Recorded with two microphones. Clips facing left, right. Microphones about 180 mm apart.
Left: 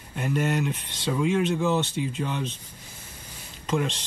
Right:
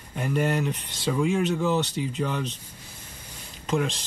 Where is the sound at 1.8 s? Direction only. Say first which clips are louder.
Right 1 dB; 40° right (ahead or behind).